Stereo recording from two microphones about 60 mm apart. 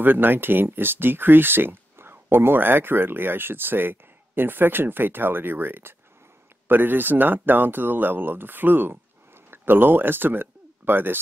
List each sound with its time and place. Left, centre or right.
0.0 s speech: right